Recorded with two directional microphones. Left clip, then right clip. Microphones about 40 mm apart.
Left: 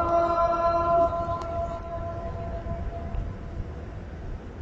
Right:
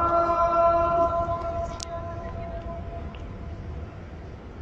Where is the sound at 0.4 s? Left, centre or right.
Left.